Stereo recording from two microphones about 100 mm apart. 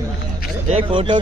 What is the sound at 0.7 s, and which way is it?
Speech, 60° right (ahead or behind).